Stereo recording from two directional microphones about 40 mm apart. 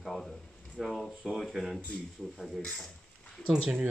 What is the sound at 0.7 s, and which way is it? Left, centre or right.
Speech, centre.